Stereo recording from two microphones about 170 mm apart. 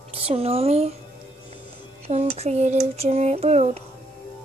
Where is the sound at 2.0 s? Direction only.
35° right (ahead or behind).